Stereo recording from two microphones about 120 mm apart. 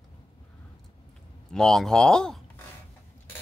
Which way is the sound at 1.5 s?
5° left (ahead or behind).